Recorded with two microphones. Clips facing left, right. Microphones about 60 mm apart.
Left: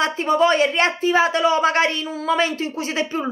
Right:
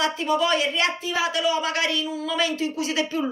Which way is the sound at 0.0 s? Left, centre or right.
Left.